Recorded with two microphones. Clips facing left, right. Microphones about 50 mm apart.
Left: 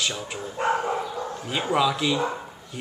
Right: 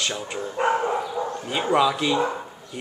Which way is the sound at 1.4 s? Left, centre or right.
Centre.